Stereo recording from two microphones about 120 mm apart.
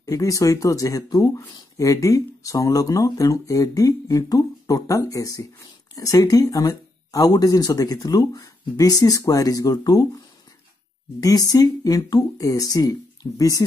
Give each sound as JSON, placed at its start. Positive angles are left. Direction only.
{"t": 0.0, "sound": "speech", "side_deg": 25}
{"t": 11.1, "sound": "speech", "side_deg": 30}